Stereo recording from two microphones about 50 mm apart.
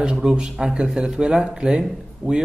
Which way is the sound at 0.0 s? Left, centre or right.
Centre.